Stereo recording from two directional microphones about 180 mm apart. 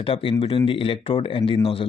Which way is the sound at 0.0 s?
30° left (ahead or behind).